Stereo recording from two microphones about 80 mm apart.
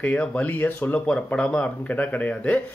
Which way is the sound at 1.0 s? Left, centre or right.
Centre.